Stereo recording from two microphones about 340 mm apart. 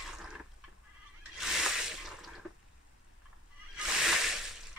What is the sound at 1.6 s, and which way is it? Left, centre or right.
Drip, centre.